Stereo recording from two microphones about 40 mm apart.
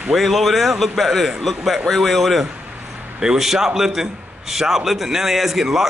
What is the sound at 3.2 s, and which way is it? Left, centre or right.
A man's voice, centre.